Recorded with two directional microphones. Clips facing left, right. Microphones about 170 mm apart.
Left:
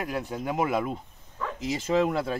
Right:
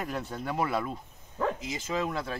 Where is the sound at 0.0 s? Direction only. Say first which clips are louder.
Left 3 dB; 10° left (ahead or behind).